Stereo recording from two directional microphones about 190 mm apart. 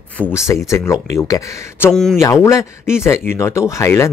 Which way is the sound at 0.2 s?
15° left (ahead or behind).